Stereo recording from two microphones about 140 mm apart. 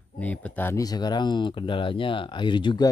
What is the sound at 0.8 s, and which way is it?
Speech, 30° left (ahead or behind).